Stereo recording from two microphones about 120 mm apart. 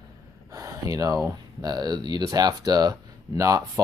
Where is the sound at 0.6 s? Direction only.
30° right (ahead or behind).